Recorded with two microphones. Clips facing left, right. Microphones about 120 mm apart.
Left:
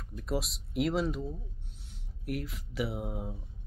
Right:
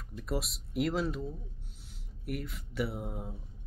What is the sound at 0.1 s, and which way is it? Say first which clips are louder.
Speech: left 1 dB; centre (ahead or behind).